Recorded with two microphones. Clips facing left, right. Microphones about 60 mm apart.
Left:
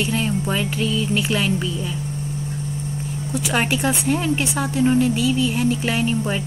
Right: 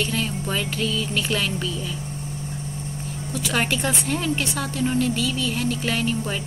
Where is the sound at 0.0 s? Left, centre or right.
Centre.